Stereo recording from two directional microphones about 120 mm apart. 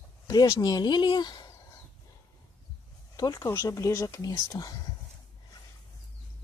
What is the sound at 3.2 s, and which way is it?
Speech, 30° left (ahead or behind).